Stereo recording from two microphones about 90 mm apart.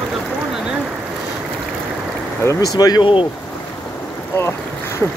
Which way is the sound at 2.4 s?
40° left (ahead or behind).